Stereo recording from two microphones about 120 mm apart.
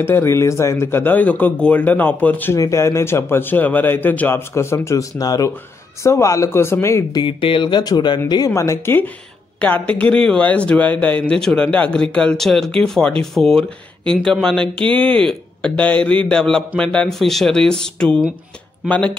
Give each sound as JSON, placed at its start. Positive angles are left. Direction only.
{"t": 0.0, "sound": "a man's voice", "side_deg": 20}